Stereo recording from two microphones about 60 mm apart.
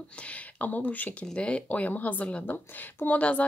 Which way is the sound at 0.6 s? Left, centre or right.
Left.